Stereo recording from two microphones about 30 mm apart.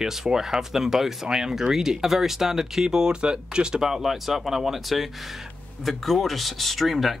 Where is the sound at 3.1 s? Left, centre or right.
Right.